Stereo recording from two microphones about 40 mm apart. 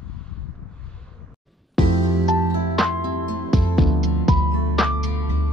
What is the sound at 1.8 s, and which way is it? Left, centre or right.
Music, centre.